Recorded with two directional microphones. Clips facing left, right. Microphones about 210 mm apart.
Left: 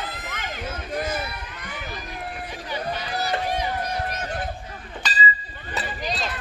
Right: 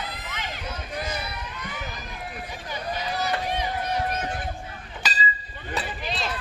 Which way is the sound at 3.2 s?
40° left (ahead or behind).